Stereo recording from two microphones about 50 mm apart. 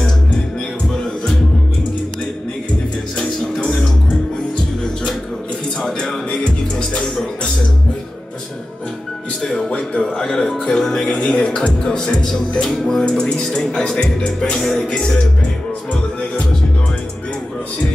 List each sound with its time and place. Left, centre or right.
3.2 s music: centre
5.8 s music: centre
7.0 s music: centre
9.7 s music: centre
11.1 s music: left
13.2 s speech: centre
14.6 s music: centre